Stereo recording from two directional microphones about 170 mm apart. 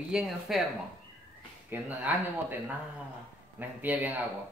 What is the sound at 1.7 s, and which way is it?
Speech, 10° right (ahead or behind).